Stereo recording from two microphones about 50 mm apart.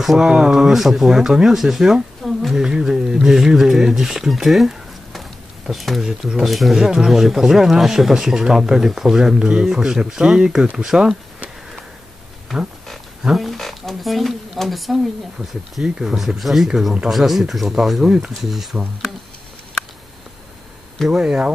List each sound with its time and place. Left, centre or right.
0.0 s speech: centre
6.8 s speech: centre
13.4 s speech: centre
21.1 s speech: centre